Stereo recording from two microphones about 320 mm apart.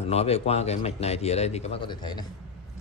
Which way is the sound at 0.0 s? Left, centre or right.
Centre.